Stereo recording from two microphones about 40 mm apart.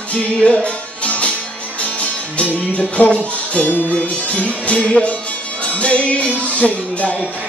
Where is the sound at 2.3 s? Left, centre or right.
Left.